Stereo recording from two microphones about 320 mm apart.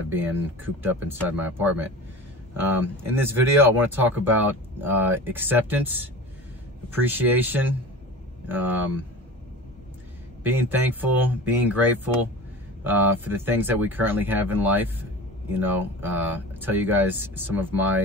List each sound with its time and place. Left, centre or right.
0.8 s speech: centre
10.4 s speech: centre